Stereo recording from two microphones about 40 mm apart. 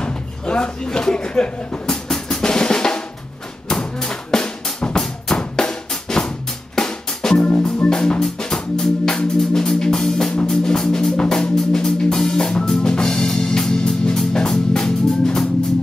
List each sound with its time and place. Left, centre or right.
0.0 s a sound: left
2.2 s drum: centre
7.9 s music: centre